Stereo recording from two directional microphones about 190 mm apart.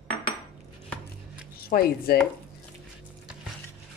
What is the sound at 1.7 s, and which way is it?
Speech, 55° left (ahead or behind).